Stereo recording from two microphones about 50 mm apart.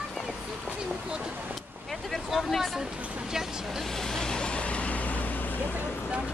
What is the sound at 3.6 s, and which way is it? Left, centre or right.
Vehicle, centre.